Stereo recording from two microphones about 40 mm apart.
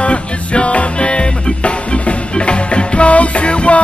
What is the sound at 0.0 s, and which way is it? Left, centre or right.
Music, left.